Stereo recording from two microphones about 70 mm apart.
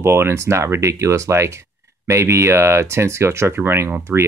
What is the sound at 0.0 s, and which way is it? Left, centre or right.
Speech, right.